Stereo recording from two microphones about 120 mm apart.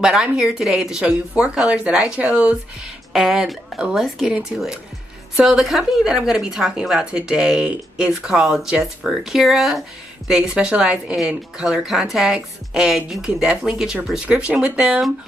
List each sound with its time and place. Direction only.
0.0 s speech: 5° right (ahead or behind)